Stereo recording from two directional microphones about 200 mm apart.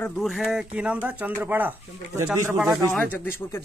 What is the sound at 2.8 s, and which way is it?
Speech, 10° left (ahead or behind).